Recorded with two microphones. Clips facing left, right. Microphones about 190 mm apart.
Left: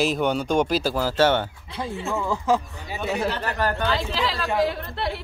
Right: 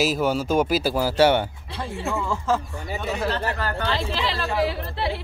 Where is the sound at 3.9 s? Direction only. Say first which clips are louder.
Left 1 dB; centre (ahead or behind).